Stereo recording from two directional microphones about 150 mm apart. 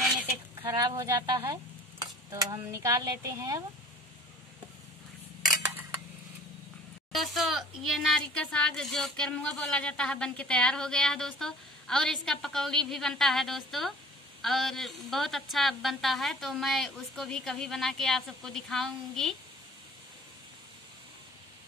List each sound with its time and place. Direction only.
0.6 s stir: 25° right (ahead or behind)
7.2 s speech: centre (ahead or behind)